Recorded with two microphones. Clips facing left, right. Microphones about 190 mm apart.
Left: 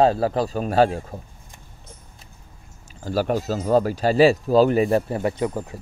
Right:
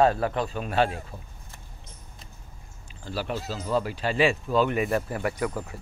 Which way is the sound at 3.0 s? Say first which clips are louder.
Left 9 dB; 45° left (ahead or behind).